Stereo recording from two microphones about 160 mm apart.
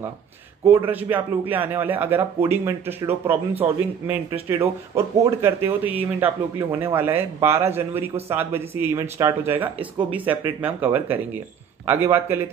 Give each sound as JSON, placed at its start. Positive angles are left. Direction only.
{"t": 0.7, "sound": "speech", "side_deg": -15}